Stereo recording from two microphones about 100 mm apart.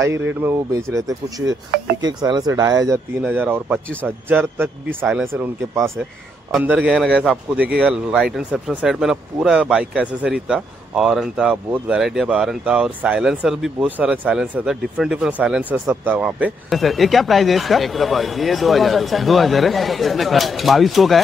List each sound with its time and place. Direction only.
0.0 s speech: 25° right (ahead or behind)
3.2 s a man's voice: 15° right (ahead or behind)
6.6 s a man's voice: 10° right (ahead or behind)
16.7 s speech: centre (ahead or behind)